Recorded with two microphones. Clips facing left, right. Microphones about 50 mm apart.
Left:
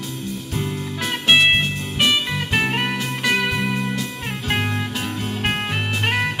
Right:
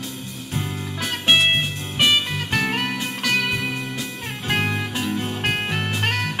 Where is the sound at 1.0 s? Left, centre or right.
Centre.